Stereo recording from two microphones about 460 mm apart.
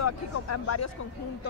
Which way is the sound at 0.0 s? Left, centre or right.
Left.